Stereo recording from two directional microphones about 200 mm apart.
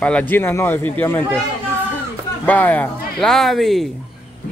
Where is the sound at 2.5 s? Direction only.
10° left (ahead or behind).